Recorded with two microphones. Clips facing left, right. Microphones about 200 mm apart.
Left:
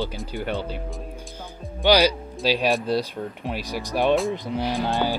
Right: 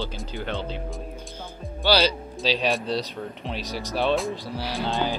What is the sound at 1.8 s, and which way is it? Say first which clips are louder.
A man's voice: left 3 dB; 15° left (ahead or behind).